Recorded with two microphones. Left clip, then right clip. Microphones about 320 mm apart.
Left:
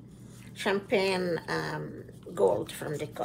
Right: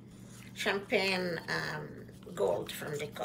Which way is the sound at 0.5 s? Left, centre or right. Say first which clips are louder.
Left 3 dB; centre.